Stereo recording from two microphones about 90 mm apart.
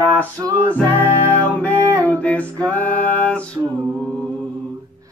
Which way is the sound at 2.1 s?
15° left (ahead or behind).